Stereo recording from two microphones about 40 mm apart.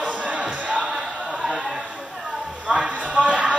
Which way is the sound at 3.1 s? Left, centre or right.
Right.